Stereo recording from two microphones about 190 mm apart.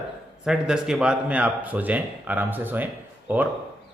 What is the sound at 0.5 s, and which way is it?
A man's voice, 5° right (ahead or behind).